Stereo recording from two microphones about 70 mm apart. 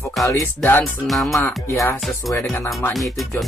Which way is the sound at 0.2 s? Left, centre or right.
Left.